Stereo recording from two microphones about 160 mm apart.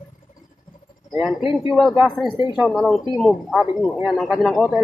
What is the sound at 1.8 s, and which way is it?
Speech, centre (ahead or behind).